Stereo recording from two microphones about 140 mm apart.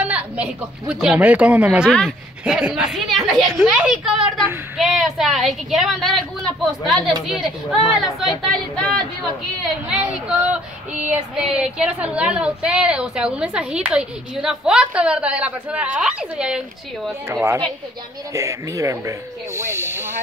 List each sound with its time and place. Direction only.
0.0 s female singing: 10° right (ahead or behind)
2.0 s speech: centre (ahead or behind)
9.8 s female singing: 10° right (ahead or behind)
17.3 s speech: 20° right (ahead or behind)